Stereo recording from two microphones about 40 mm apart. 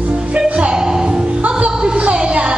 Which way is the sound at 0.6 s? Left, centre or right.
Centre.